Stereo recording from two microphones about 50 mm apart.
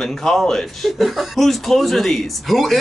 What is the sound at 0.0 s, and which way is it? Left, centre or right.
Speech, centre.